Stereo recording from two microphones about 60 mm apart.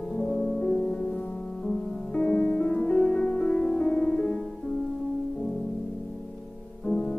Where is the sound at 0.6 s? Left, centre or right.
Centre.